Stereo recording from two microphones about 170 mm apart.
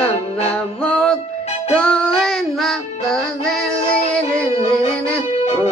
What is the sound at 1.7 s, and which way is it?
Female singing, 5° left (ahead or behind).